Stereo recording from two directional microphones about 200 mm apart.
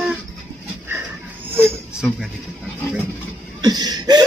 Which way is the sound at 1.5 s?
5° right (ahead or behind).